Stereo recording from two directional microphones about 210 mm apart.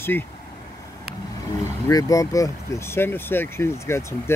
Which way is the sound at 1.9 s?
15° left (ahead or behind).